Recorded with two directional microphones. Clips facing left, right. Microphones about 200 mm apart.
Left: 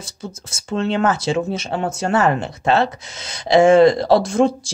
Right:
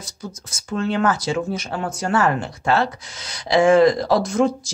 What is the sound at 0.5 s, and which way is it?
Speech, 25° left (ahead or behind).